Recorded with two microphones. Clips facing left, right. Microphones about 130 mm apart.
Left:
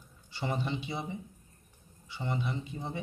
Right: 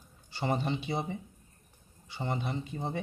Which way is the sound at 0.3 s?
40° right (ahead or behind).